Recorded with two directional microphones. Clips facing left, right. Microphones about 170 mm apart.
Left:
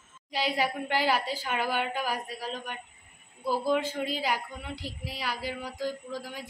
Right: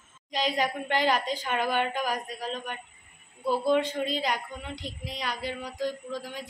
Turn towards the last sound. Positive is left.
turn(degrees=10)  # may be behind; listen again after turning